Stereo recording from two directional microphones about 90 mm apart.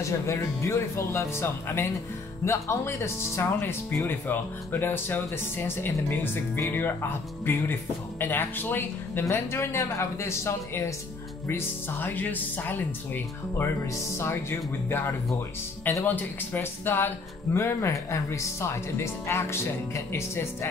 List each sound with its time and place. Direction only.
0.0 s speech: 30° left (ahead or behind)